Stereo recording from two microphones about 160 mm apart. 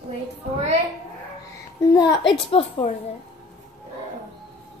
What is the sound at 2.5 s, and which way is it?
Speech, 30° left (ahead or behind).